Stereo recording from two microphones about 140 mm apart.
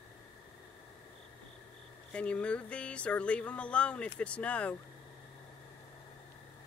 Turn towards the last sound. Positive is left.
turn(degrees=10)  # may be behind; listen again after turning